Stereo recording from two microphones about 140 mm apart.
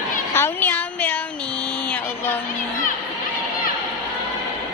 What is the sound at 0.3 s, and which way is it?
Speech, 15° left (ahead or behind).